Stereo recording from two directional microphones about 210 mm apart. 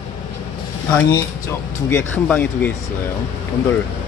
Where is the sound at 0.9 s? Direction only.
10° left (ahead or behind).